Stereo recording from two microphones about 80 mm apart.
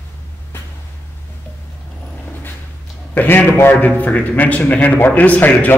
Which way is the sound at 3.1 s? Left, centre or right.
Left.